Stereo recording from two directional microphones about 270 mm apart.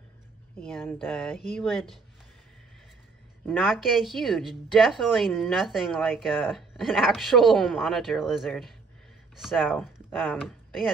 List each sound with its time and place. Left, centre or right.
0.7 s a woman's voice: centre
3.4 s a woman's voice: centre